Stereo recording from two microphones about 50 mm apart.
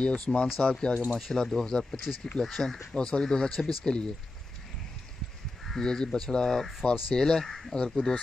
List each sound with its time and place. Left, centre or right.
0.0 s speech: centre
5.7 s speech: centre